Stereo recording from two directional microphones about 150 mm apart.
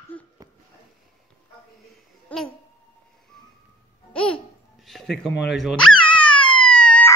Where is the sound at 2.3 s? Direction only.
10° left (ahead or behind).